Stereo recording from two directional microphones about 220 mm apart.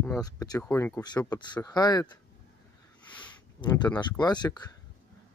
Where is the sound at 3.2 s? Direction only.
20° left (ahead or behind).